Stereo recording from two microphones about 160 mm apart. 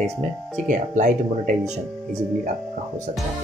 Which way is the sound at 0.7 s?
55° right (ahead or behind).